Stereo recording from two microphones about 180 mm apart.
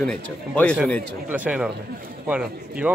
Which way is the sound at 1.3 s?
10° right (ahead or behind).